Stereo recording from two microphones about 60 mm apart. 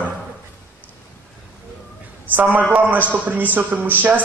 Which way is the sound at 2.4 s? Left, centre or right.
Right.